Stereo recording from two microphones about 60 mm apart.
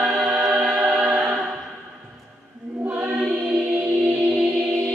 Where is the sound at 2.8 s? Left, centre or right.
Centre.